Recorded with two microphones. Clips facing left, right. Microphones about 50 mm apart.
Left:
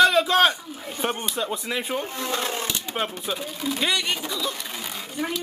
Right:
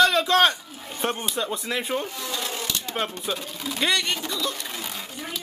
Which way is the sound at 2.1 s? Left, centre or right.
Left.